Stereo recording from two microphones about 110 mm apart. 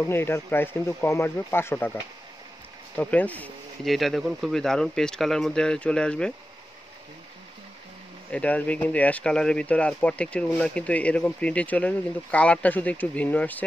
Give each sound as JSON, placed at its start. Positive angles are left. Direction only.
{"t": 0.0, "sound": "speech", "side_deg": 20}
{"t": 3.0, "sound": "speech", "side_deg": 15}
{"t": 3.8, "sound": "speech", "side_deg": 0}
{"t": 8.3, "sound": "speech", "side_deg": 10}